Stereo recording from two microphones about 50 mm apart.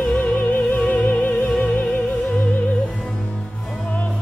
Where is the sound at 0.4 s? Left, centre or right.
Left.